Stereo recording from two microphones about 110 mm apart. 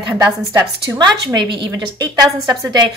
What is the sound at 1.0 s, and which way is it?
A woman's voice, 45° right (ahead or behind).